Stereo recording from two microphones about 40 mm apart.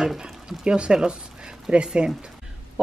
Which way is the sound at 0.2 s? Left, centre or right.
Centre.